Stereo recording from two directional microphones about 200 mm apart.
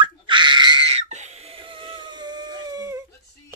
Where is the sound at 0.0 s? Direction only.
25° right (ahead or behind).